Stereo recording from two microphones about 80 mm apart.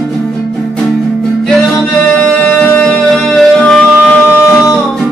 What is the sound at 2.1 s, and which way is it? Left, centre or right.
Music, centre.